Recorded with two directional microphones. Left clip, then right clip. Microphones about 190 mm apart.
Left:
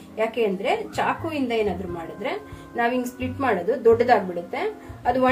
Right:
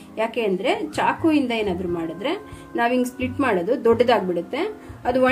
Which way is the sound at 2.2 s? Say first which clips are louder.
Right 3 dB; 55° right (ahead or behind).